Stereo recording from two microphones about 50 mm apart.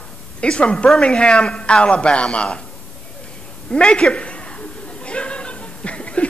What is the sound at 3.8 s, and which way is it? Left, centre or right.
Speech, centre.